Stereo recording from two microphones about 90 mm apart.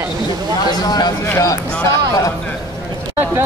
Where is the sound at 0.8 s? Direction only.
45° left (ahead or behind).